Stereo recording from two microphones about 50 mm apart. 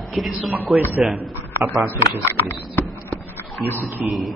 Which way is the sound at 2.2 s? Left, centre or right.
Left.